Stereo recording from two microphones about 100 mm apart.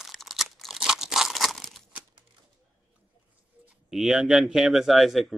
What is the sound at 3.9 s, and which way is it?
Speech, 5° right (ahead or behind).